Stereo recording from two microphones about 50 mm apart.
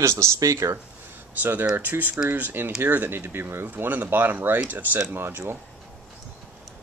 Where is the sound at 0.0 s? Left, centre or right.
Right.